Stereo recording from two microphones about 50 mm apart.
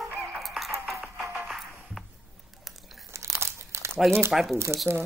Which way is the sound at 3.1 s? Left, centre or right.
Right.